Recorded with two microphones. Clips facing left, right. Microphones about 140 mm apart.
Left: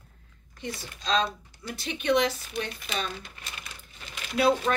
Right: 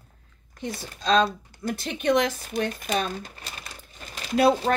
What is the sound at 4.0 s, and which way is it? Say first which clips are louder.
Crumpling: right 4 dB; 40° right (ahead or behind).